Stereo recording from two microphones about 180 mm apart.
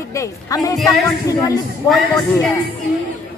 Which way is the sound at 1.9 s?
5° left (ahead or behind).